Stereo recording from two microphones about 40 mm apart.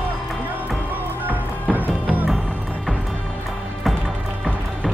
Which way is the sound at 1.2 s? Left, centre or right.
Right.